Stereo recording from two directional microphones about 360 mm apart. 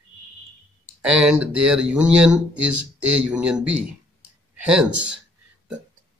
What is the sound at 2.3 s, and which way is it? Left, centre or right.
Speech, right.